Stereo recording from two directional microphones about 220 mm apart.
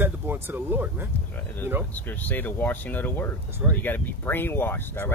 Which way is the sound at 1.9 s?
10° left (ahead or behind).